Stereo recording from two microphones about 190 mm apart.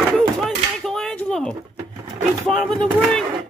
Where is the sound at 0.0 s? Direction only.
Centre (ahead or behind).